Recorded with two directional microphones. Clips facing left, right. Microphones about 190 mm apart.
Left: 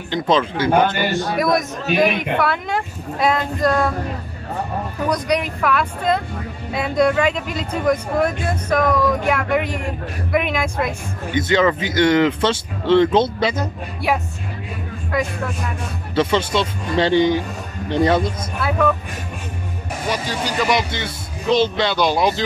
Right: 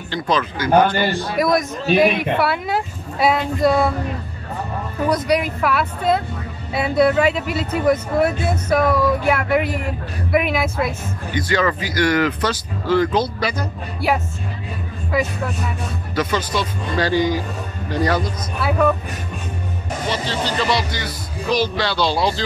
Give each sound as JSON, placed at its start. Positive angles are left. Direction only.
{"t": 0.1, "sound": "speech", "side_deg": 25}
{"t": 1.4, "sound": "speech", "side_deg": 0}
{"t": 5.0, "sound": "speech", "side_deg": -5}
{"t": 11.3, "sound": "speech", "side_deg": 20}
{"t": 14.0, "sound": "speech", "side_deg": 0}
{"t": 16.2, "sound": "speech", "side_deg": 25}
{"t": 18.6, "sound": "speech", "side_deg": -5}
{"t": 20.1, "sound": "speech", "side_deg": 10}
{"t": 20.9, "sound": "speech", "side_deg": 25}